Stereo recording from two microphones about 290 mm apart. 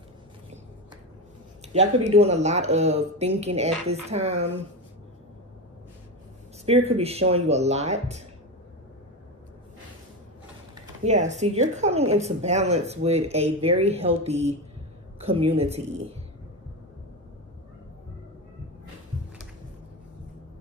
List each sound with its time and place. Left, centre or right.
1.7 s speech: right
6.6 s speech: right
11.1 s speech: right